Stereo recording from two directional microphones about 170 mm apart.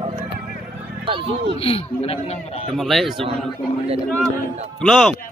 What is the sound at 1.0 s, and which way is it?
Speech, 30° right (ahead or behind).